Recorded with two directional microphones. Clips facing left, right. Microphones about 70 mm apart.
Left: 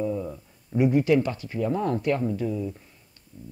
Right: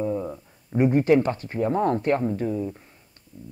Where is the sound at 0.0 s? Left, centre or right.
Right.